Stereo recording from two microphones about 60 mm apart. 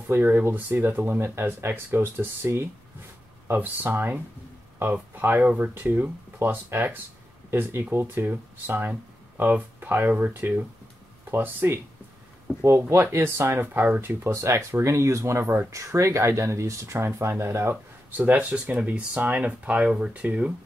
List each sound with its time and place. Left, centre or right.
0.1 s speech: right
1.2 s speech: right
8.3 s speech: right
12.6 s speech: right
18.1 s speech: right